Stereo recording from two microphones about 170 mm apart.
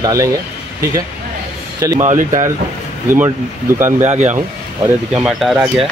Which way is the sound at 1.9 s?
45° right (ahead or behind).